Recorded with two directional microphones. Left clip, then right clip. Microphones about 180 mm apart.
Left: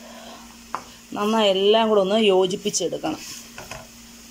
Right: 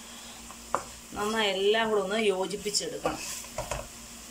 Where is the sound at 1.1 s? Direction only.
45° left (ahead or behind).